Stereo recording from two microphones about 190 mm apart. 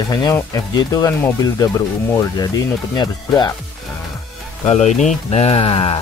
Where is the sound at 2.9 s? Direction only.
20° left (ahead or behind).